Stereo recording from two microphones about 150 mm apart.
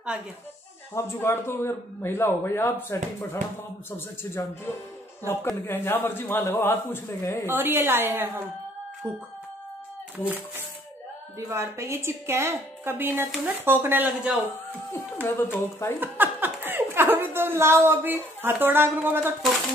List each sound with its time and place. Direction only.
0.9 s a man's voice: 15° left (ahead or behind)
7.4 s a woman's voice: 15° right (ahead or behind)
11.3 s a woman's voice: 20° right (ahead or behind)
15.2 s a man's voice: 15° left (ahead or behind)
16.0 s a sound: 15° right (ahead or behind)